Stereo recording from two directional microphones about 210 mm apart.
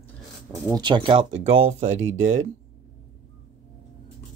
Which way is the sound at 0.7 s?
20° right (ahead or behind).